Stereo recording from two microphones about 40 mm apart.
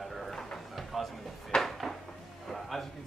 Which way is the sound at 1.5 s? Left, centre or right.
Left.